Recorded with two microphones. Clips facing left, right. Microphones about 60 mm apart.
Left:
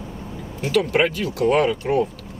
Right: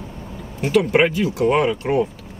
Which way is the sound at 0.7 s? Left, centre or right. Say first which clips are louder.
Right 3 dB; centre.